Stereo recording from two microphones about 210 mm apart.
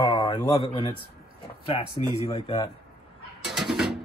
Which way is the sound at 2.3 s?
25° left (ahead or behind).